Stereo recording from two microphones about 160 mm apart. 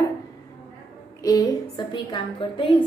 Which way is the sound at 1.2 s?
20° left (ahead or behind).